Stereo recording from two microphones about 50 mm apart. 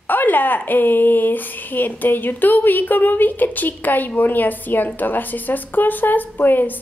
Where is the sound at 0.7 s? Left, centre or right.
Left.